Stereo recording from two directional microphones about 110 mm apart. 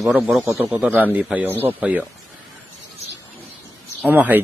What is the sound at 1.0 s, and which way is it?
A man's voice, 15° right (ahead or behind).